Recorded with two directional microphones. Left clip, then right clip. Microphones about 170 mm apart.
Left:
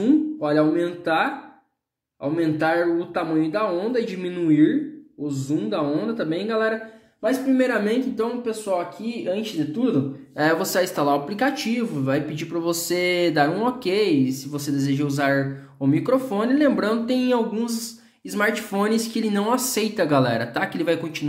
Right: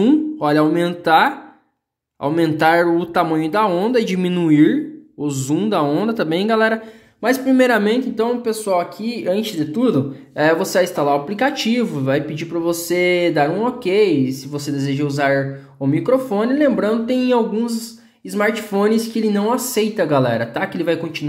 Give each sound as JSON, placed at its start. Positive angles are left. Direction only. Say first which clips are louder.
{"t": 0.0, "sound": "speech", "louder": "right 5 dB", "side_deg": -50}
{"t": 7.8, "sound": "speech", "louder": "right 5 dB", "side_deg": -30}
{"t": 10.3, "sound": "speech", "louder": "right 5 dB", "side_deg": -15}
{"t": 12.1, "sound": "speech", "louder": "right 5 dB", "side_deg": -15}